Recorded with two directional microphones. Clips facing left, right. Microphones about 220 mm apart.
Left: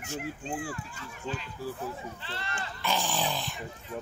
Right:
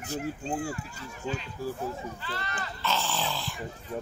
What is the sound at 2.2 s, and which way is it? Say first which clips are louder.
Speech: right 3 dB; 25° left (ahead or behind).